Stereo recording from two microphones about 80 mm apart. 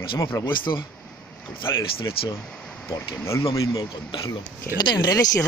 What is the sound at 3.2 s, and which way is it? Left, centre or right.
Speech, left.